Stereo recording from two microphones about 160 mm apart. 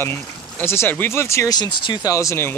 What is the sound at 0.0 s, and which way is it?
Speech, 15° left (ahead or behind).